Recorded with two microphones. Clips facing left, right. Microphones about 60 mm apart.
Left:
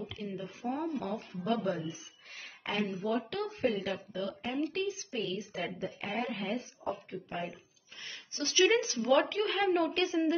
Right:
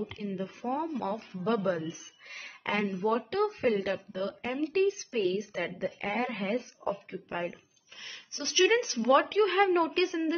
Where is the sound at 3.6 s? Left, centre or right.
Right.